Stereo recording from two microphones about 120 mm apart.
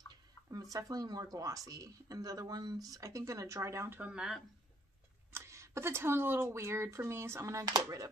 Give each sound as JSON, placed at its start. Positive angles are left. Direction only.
{"t": 0.1, "sound": "speech", "side_deg": -30}
{"t": 4.0, "sound": "speech", "side_deg": -5}
{"t": 5.3, "sound": "speech", "side_deg": -20}